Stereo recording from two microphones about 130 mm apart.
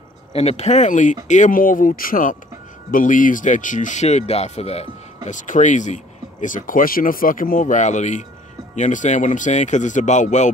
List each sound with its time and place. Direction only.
0.3 s speech: 55° left (ahead or behind); by 5.9 s 70° left (ahead or behind)
6.4 s speech: 90° left; by 10.5 s 65° left (ahead or behind)